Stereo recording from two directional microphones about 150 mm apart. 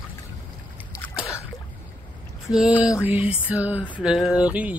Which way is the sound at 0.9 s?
20° left (ahead or behind).